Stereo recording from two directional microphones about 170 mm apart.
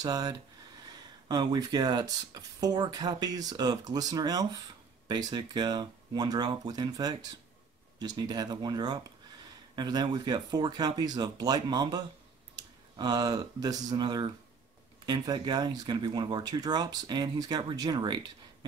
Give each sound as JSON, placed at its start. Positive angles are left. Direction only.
{"t": 0.0, "sound": "speech", "side_deg": -20}